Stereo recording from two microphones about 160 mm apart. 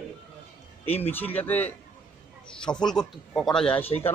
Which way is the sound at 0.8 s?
10° left (ahead or behind).